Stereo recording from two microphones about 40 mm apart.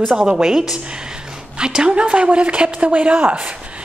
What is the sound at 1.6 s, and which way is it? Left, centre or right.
A woman's voice, right.